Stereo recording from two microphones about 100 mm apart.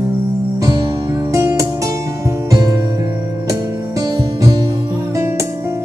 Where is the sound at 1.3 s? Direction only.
35° right (ahead or behind).